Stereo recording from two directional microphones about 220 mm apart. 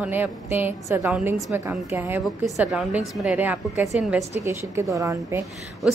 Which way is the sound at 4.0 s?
5° right (ahead or behind).